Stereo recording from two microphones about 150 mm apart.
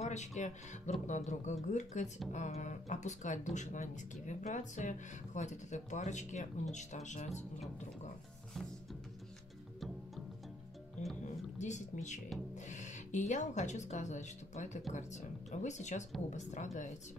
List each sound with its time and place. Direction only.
0.0 s speech: 50° left (ahead or behind)
11.2 s music: 50° left (ahead or behind)
12.6 s speech: 55° left (ahead or behind)